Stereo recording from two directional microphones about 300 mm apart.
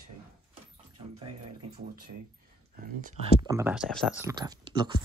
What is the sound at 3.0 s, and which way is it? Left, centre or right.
Speech, right.